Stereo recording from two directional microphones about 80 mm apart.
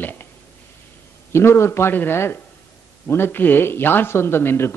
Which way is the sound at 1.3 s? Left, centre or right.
Left.